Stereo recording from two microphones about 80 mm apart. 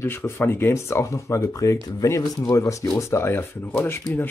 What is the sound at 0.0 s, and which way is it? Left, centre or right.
Speech, left.